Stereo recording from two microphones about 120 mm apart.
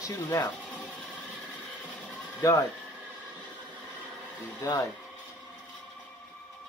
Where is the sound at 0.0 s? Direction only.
30° left (ahead or behind).